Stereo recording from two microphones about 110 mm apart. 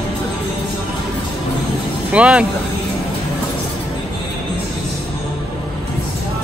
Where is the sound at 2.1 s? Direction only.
10° right (ahead or behind).